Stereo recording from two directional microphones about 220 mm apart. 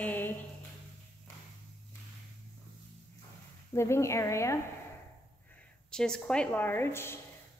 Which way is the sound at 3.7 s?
10° left (ahead or behind).